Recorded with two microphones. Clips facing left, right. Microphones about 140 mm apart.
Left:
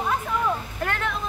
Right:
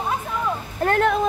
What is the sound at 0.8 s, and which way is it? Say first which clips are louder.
Speech: right 11 dB; 45° right (ahead or behind).